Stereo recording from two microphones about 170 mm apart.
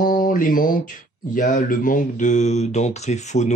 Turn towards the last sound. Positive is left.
turn(degrees=40)  # may be behind; listen again after turning